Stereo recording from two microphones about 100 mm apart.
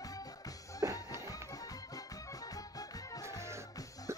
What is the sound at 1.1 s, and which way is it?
Music, 25° right (ahead or behind).